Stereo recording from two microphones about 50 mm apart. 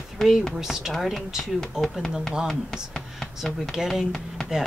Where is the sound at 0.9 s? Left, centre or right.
Centre.